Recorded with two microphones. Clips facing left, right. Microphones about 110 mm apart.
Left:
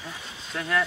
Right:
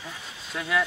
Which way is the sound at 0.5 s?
5° right (ahead or behind).